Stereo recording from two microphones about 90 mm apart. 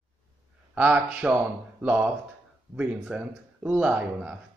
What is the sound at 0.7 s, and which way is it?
A man's voice, 15° right (ahead or behind).